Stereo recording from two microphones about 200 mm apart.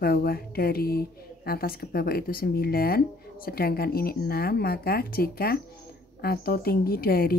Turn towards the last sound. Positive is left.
turn(degrees=50)  # may be behind; listen again after turning